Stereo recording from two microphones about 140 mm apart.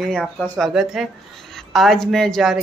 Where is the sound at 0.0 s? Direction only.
5° left (ahead or behind).